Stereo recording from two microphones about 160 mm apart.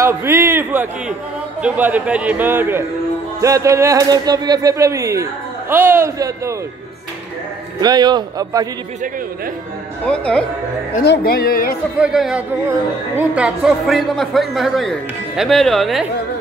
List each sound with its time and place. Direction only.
0.0 s a man's voice: 15° right (ahead or behind)
7.8 s speech: 25° right (ahead or behind)
10.0 s speech: 5° left (ahead or behind)
11.1 s speech: 75° left (ahead or behind)
12.0 s speech: 5° right (ahead or behind)